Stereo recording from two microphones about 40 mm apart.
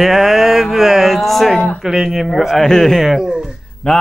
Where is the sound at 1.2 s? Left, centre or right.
Centre.